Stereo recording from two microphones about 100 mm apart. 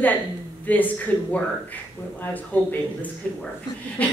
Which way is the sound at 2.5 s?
20° left (ahead or behind).